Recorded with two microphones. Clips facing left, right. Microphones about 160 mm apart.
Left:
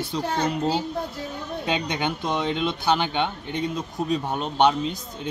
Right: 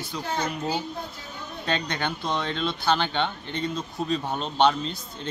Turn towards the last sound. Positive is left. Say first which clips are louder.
# left 4 dB
turn(degrees=10)  # may be behind; listen again after turning